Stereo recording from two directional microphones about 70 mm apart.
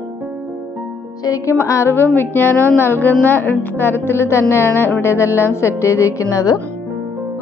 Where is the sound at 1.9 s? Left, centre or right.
Left.